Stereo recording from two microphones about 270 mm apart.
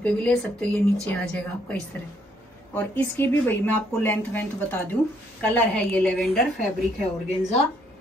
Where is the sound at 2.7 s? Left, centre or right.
Centre.